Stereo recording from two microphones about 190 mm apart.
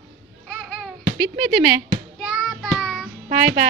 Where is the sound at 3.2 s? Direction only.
45° right (ahead or behind).